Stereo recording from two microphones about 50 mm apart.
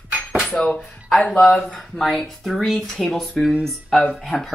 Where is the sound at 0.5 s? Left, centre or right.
Centre.